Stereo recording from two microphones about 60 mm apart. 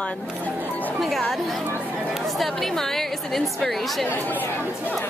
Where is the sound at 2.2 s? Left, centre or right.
Centre.